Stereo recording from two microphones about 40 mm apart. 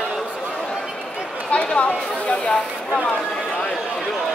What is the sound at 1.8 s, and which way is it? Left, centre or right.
Speech, left.